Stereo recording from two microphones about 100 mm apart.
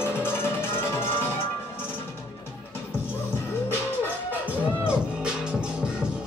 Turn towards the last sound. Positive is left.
turn(degrees=-10)  # may be behind; listen again after turning